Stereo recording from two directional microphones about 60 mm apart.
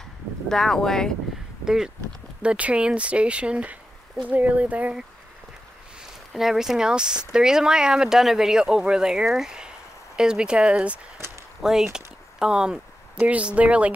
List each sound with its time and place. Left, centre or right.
0.5 s speech: centre
1.6 s speech: centre; by 4.9 s right
6.3 s speech: centre
11.6 s speech: centre